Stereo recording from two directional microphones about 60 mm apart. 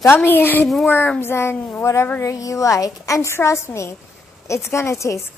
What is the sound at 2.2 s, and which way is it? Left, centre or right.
A woman's voice, left.